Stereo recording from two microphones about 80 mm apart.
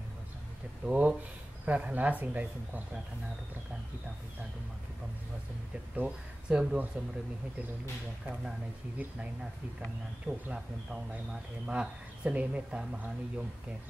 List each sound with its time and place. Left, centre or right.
0.8 s speech: centre
5.9 s speech: centre
8.9 s speech: centre